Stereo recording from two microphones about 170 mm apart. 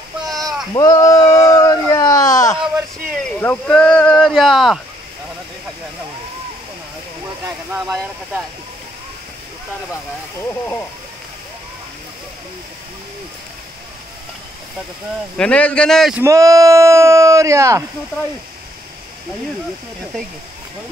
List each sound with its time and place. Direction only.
0.3 s a sound: centre (ahead or behind)
0.7 s a sound: 20° left (ahead or behind)
3.3 s speech: 10° left (ahead or behind)
7.4 s speech: 15° right (ahead or behind)
15.3 s a man's voice: 5° left (ahead or behind)
16.2 s speech: 20° right (ahead or behind)